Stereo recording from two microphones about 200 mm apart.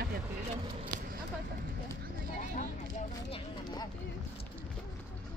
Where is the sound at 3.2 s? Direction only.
25° left (ahead or behind).